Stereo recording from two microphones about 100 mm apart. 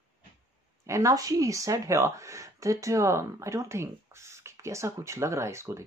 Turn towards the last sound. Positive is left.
turn(degrees=-30)  # may be behind; listen again after turning